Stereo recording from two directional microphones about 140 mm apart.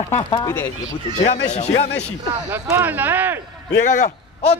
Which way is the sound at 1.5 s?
55° left (ahead or behind).